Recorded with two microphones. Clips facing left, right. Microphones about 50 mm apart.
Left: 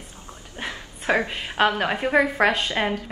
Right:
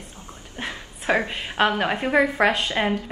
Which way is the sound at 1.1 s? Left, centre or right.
Centre.